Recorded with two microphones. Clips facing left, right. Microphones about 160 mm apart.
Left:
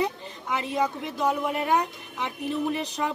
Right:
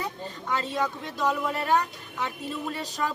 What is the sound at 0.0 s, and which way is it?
A woman's voice, 15° left (ahead or behind).